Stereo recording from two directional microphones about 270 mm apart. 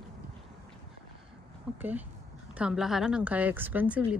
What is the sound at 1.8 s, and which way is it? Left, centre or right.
A woman's voice, centre.